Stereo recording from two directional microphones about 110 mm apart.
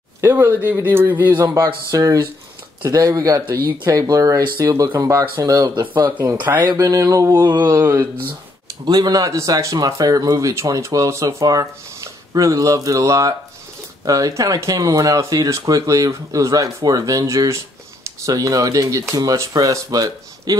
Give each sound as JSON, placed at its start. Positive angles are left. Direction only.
{"t": 0.2, "sound": "mantra", "side_deg": -20}
{"t": 0.7, "sound": "speech", "side_deg": -20}
{"t": 1.9, "sound": "speech", "side_deg": -35}
{"t": 7.6, "sound": "mantra", "side_deg": -20}
{"t": 8.8, "sound": "speech", "side_deg": -40}